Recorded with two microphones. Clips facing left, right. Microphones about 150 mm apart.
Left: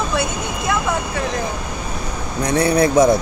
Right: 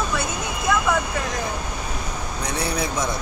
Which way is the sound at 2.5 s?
60° left (ahead or behind).